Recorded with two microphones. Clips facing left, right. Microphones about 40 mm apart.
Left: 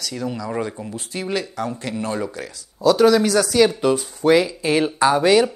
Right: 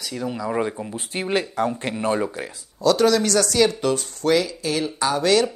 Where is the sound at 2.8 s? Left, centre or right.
Centre.